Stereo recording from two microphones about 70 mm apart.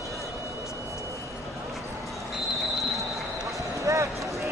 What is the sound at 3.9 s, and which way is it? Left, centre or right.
Basketball bounce, right.